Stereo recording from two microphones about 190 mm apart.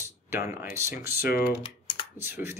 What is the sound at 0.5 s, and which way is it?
Speech, 10° right (ahead or behind).